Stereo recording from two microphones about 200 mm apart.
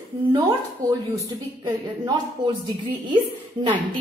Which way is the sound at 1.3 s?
15° right (ahead or behind).